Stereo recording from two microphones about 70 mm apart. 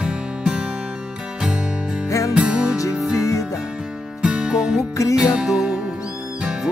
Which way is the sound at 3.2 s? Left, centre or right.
Left.